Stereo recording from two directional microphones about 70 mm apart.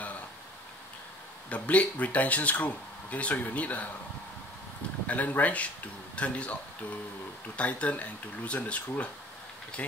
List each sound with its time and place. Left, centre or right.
1.5 s speech: centre
5.0 s speech: left